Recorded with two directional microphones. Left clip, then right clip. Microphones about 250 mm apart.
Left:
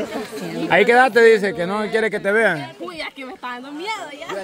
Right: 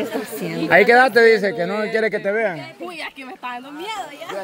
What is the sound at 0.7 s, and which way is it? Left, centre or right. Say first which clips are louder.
Speech: right 1 dB; centre.